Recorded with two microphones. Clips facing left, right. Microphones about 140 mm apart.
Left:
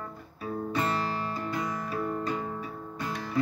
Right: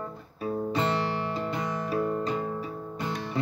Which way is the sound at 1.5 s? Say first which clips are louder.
Right 3 dB; 25° right (ahead or behind).